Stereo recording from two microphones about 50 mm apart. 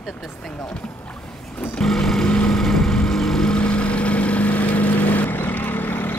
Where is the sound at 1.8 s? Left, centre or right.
Centre.